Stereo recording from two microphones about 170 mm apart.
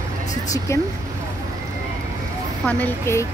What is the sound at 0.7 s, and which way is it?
Speech, 15° left (ahead or behind).